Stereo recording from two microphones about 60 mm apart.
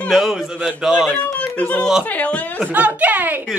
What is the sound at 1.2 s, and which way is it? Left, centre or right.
Speech, left.